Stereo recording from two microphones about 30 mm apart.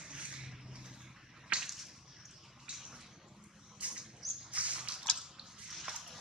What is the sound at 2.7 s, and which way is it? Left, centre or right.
Bathtub, right.